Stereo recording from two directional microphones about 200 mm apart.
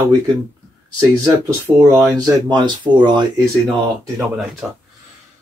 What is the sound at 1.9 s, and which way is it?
Speech, 20° right (ahead or behind).